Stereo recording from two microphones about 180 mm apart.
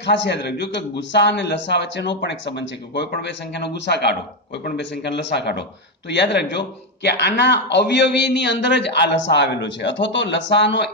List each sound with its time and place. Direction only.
0.0 s a man's voice: 75° left (ahead or behind)